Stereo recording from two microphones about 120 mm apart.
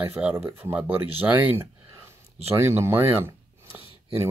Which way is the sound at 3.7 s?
25° right (ahead or behind).